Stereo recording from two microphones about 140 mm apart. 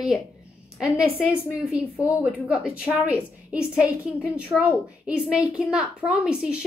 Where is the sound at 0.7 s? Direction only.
5° right (ahead or behind).